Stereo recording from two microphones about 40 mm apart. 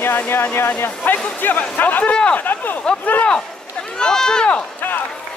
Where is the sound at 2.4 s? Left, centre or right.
Left.